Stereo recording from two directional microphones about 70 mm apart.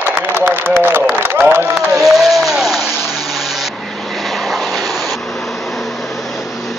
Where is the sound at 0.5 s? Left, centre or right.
Right.